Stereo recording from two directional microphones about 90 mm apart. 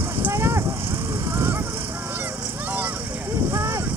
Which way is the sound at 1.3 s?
25° right (ahead or behind).